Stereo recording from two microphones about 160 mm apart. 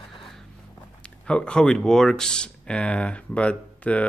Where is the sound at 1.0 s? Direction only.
5° left (ahead or behind).